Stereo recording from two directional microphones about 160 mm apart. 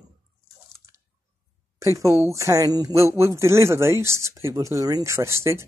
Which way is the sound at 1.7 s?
20° right (ahead or behind).